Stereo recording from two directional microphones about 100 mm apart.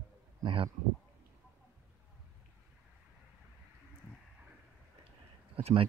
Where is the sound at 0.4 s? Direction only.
55° right (ahead or behind).